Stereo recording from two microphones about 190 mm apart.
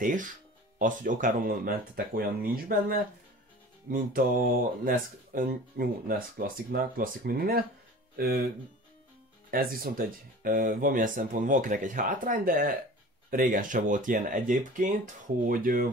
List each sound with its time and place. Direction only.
0.0 s speech: 45° right (ahead or behind)
9.5 s speech: 50° right (ahead or behind)